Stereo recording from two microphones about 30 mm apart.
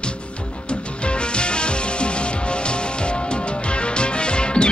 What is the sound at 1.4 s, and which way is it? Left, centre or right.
Music, left.